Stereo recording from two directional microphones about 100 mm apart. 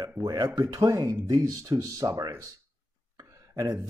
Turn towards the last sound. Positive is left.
turn(degrees=-35)  # may be behind; listen again after turning